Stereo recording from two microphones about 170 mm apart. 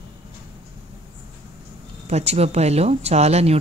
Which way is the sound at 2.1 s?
40° right (ahead or behind).